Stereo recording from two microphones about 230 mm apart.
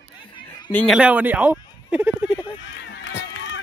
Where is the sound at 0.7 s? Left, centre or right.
Centre.